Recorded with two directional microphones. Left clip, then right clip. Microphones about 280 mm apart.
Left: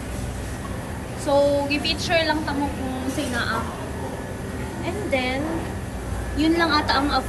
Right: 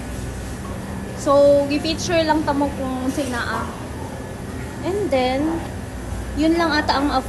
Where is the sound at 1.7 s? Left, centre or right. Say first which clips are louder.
Right 1 dB; centre.